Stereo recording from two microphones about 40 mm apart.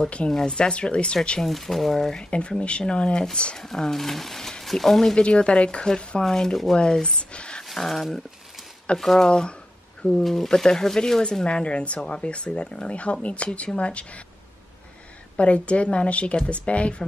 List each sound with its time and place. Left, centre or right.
0.3 s speech: centre
0.6 s speech: left
1.4 s speech: centre; by 3.3 s left
3.5 s speech: centre
5.1 s speech: left
6.2 s speech: centre
7.6 s speech: centre
9.3 s speech: left
10.2 s speech: centre
11.4 s speech: left
15.3 s speech: left